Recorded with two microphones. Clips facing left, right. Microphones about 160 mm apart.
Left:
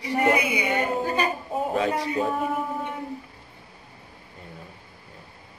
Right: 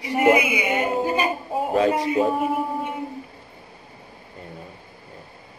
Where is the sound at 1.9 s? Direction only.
15° right (ahead or behind).